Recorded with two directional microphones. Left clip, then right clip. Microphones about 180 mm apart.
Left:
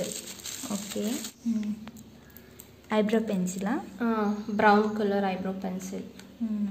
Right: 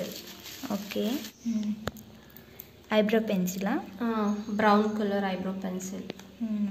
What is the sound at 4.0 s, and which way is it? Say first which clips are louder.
A woman's voice: left 4 dB; 30° left (ahead or behind).